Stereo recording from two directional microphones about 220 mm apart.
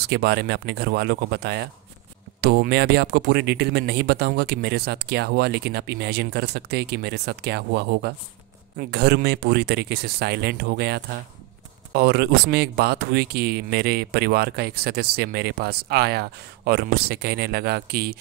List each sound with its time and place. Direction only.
0.1 s speech: 45° right (ahead or behind)